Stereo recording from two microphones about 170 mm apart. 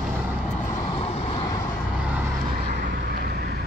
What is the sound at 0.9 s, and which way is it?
Vehicle, 35° left (ahead or behind).